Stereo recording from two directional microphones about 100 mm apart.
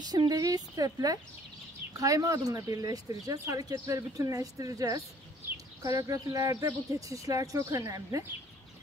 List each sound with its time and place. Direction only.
0.0 s speech: 40° right (ahead or behind)